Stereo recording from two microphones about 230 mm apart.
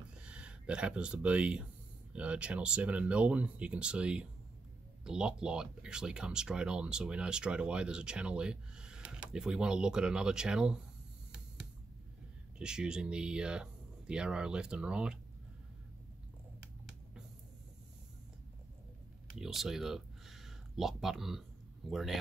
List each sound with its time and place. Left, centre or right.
0.1 s speech: centre
12.5 s speech: centre
19.3 s speech: centre